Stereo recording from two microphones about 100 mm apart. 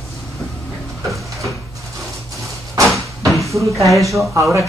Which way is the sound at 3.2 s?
Centre (ahead or behind).